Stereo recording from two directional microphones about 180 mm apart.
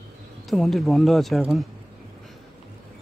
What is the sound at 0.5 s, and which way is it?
Speech, centre (ahead or behind).